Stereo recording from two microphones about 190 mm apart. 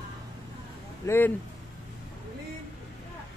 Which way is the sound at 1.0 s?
15° left (ahead or behind).